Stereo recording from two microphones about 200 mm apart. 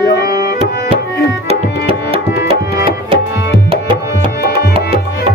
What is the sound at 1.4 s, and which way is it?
Music, 30° right (ahead or behind).